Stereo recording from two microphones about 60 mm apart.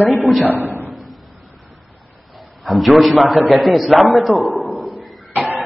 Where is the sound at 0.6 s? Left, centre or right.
Left.